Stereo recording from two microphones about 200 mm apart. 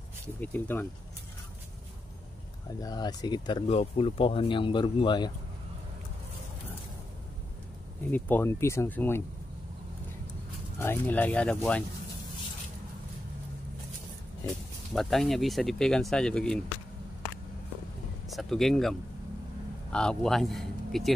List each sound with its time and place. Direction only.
0.4 s speech: 10° left (ahead or behind)
2.8 s speech: 20° left (ahead or behind)
8.1 s speech: 10° left (ahead or behind)
10.8 s speech: 10° left (ahead or behind)
15.0 s speech: centre (ahead or behind)
18.3 s speech: centre (ahead or behind)